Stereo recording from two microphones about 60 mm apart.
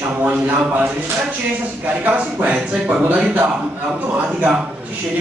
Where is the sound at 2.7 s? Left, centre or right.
Centre.